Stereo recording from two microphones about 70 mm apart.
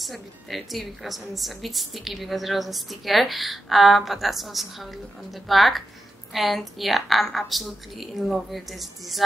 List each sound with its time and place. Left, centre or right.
0.0 s a woman's voice: centre